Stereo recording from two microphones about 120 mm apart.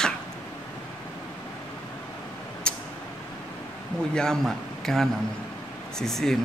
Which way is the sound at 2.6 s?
10° left (ahead or behind).